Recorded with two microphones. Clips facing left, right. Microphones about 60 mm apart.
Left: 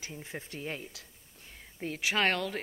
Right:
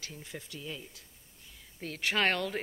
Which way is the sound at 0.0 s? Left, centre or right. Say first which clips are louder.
Left 3 dB; left.